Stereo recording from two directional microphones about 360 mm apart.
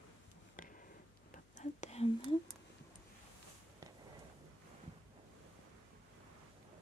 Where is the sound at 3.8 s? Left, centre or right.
Centre.